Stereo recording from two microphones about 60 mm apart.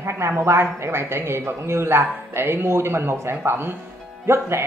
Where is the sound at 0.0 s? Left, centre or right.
Right.